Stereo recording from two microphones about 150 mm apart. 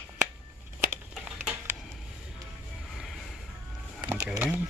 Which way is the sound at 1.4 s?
15° right (ahead or behind).